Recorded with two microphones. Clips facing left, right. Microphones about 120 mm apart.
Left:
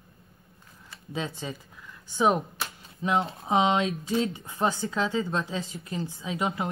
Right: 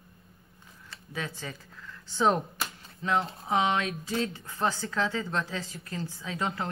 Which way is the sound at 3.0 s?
20° left (ahead or behind).